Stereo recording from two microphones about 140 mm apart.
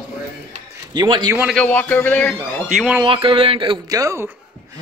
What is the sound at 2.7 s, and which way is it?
Speech, 5° right (ahead or behind).